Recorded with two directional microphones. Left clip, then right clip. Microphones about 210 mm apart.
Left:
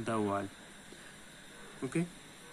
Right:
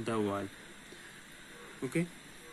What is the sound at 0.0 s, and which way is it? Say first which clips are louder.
Speech: even; 10° right (ahead or behind).